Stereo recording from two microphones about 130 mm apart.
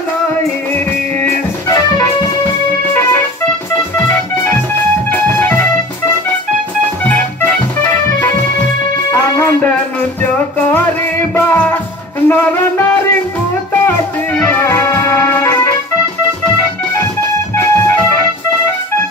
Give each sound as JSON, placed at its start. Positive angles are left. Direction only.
{"t": 5.1, "sound": "music", "side_deg": 15}
{"t": 11.3, "sound": "music", "side_deg": 10}
{"t": 14.5, "sound": "music", "side_deg": 20}